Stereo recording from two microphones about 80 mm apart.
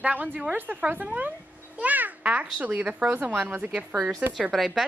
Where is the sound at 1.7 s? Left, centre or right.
Centre.